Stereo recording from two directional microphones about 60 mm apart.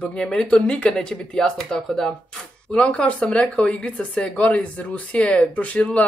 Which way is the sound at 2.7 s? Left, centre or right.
Centre.